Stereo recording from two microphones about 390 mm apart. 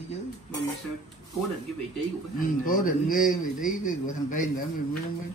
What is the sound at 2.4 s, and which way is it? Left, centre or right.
Speech, left.